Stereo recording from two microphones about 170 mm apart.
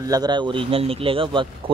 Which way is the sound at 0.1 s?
25° right (ahead or behind).